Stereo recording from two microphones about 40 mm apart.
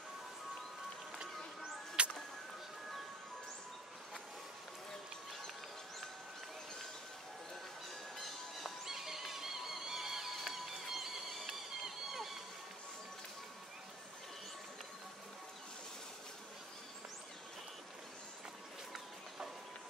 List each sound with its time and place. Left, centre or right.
1.1 s music: centre
8.2 s music: centre